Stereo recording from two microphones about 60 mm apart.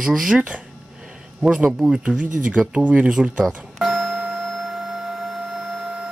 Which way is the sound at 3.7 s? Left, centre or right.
Centre.